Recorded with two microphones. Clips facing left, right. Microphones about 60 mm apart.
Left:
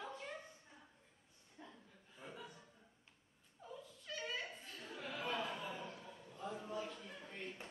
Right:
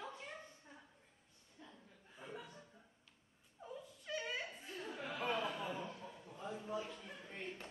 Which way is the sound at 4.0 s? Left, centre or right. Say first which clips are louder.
Right 2 dB; centre.